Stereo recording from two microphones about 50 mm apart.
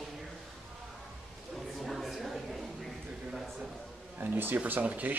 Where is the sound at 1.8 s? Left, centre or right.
Centre.